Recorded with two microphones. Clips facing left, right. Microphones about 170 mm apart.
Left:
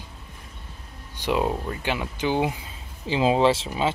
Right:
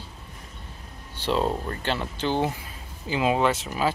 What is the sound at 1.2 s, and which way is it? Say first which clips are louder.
Speech: left 1 dB; 10° left (ahead or behind).